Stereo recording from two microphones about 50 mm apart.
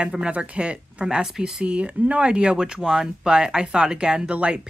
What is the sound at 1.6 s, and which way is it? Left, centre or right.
Speech, right.